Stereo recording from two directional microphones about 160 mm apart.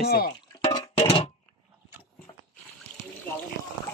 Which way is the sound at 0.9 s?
40° left (ahead or behind).